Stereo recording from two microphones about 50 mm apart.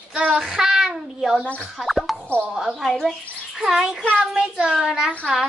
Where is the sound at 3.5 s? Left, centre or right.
Centre.